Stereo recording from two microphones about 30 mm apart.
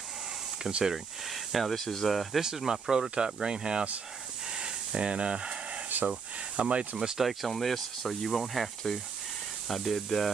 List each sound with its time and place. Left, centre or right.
0.8 s speech: centre
1.8 s speech: centre
2.4 s speech: centre
4.5 s hiss: right
6.0 s speech: right
7.0 s speech: centre
7.2 s speech: centre